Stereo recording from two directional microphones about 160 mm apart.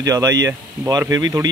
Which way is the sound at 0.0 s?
20° right (ahead or behind).